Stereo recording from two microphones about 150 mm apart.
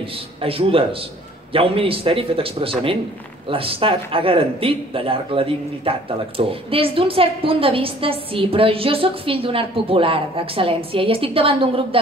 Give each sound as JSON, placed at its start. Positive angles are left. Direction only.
{"t": 0.4, "sound": "a man's voice", "side_deg": -40}